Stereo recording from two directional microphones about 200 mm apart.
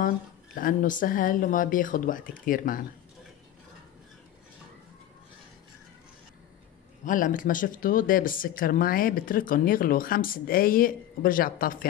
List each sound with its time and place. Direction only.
0.6 s speech: 40° left (ahead or behind)
7.1 s speech: 40° left (ahead or behind)